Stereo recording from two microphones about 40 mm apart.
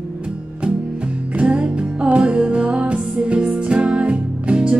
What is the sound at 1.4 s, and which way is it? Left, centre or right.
Music, right.